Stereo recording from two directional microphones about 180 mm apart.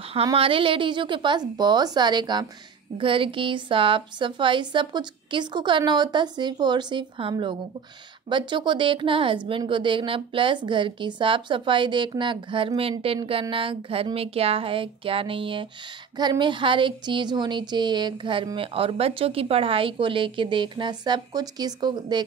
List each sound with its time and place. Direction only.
0.1 s speech: 30° right (ahead or behind)